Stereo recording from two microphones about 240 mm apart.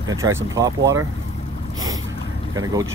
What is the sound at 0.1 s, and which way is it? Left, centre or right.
Speech, centre.